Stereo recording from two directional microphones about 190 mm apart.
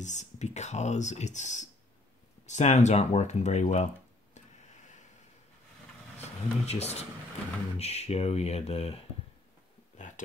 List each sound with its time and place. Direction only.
0.0 s speech: 40° left (ahead or behind)
6.1 s speech: 35° left (ahead or behind)
9.9 s a sound: 40° left (ahead or behind)